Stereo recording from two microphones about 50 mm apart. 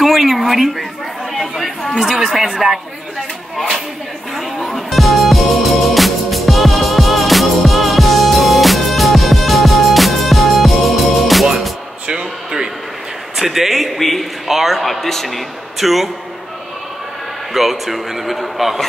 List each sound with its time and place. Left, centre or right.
0.0 s a sound: centre
1.3 s speech: centre
4.4 s music: centre
12.1 s a sound: centre
13.4 s a man's voice: centre
17.6 s a man's voice: centre